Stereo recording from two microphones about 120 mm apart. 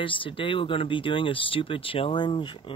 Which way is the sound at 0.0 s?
45° left (ahead or behind).